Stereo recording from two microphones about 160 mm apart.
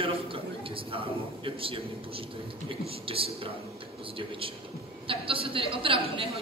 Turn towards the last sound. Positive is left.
turn(degrees=-35)  # may be behind; listen again after turning